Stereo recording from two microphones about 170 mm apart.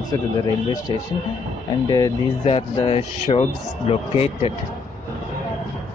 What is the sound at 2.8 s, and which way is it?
Speech, 35° left (ahead or behind).